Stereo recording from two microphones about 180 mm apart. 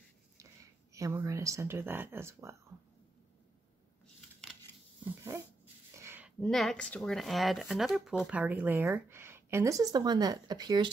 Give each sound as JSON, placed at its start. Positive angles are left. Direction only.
{"t": 0.9, "sound": "speech", "side_deg": -20}
{"t": 5.9, "sound": "a sound", "side_deg": -10}
{"t": 6.4, "sound": "speech", "side_deg": 0}